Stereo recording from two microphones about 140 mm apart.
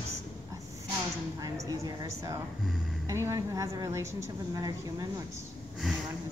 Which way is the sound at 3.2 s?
25° right (ahead or behind).